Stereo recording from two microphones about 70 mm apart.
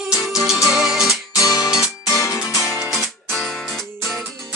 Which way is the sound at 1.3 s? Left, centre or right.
Left.